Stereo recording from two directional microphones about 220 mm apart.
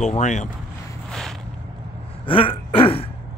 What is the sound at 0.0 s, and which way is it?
Speech, 35° left (ahead or behind).